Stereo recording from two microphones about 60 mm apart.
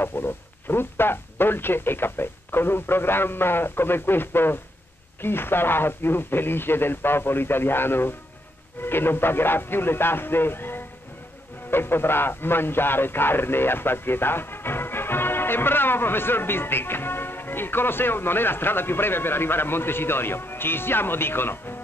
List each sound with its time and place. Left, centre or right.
0.0 s speech: left